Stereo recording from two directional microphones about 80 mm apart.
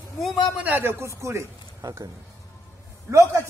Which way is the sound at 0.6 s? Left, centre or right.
Right.